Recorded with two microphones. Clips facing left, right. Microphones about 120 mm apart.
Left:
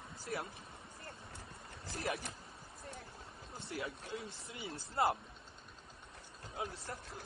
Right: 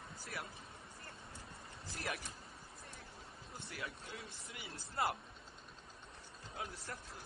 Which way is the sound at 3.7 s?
25° left (ahead or behind).